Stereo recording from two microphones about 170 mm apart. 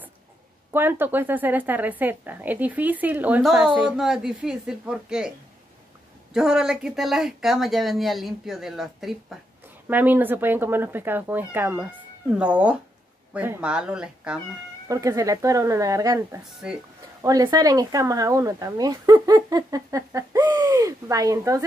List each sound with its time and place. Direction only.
0.7 s speech: 10° right (ahead or behind)
6.3 s speech: 5° right (ahead or behind)
14.9 s speech: 20° right (ahead or behind)